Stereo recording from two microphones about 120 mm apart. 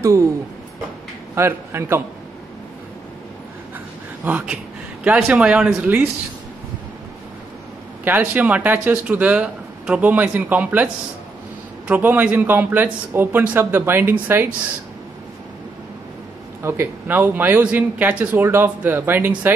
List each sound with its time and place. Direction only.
1.3 s speech: 20° right (ahead or behind)
4.2 s speech: 15° right (ahead or behind)
8.0 s speech: 15° right (ahead or behind)
11.9 s speech: 15° right (ahead or behind)
16.6 s speech: 20° right (ahead or behind)